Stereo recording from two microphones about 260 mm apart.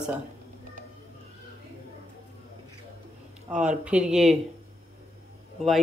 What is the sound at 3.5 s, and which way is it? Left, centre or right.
Speech, centre.